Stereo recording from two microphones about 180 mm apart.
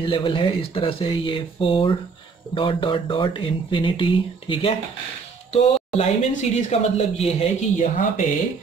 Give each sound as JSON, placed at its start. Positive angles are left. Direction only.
{"t": 0.0, "sound": "speech", "side_deg": 30}